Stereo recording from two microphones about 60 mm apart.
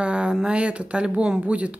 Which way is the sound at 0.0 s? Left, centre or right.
Centre.